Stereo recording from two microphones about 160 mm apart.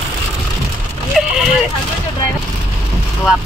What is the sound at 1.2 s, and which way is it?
Speech, centre (ahead or behind).